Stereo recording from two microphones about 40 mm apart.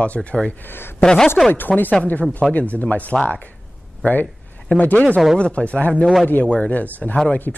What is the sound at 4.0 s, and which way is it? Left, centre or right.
Speech, left.